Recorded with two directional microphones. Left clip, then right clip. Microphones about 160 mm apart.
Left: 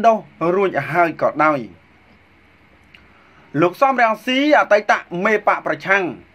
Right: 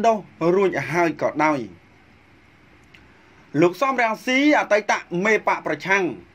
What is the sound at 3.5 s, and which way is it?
Speech, 25° right (ahead or behind).